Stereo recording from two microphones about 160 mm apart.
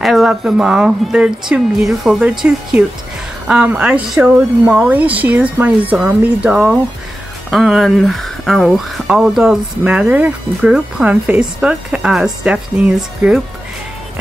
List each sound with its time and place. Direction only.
0.0 s speech: centre (ahead or behind)